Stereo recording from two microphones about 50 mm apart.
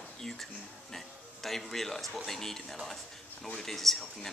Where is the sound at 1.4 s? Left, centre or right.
Centre.